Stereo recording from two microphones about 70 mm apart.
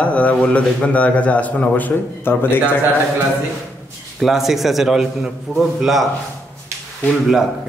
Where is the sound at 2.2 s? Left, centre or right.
Left.